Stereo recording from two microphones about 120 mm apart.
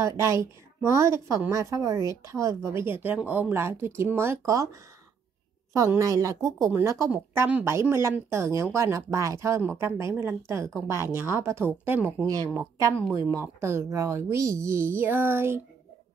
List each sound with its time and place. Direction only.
0.0 s speech: 25° right (ahead or behind)
5.7 s speech: 25° right (ahead or behind)